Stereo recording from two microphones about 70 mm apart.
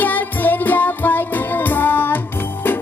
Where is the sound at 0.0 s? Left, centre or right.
Left.